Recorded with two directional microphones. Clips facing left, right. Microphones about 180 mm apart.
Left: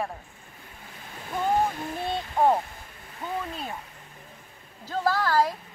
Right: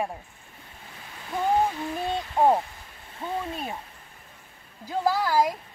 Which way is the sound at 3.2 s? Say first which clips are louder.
Right 1 dB; 30° right (ahead or behind).